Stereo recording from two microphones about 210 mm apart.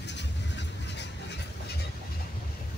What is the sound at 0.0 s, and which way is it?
Vehicle, 55° left (ahead or behind).